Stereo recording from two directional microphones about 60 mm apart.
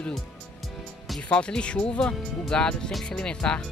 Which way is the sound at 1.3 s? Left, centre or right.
Centre.